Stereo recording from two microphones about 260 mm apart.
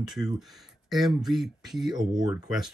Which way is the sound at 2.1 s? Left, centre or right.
Centre.